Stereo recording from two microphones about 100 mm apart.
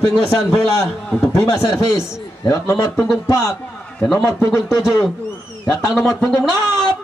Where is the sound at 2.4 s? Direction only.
30° left (ahead or behind).